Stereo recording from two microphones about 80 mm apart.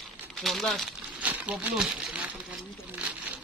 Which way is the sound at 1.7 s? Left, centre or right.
Centre.